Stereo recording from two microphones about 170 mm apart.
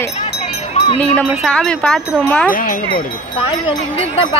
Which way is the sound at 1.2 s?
5° left (ahead or behind).